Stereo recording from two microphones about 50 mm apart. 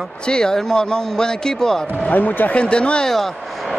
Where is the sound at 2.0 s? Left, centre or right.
Left.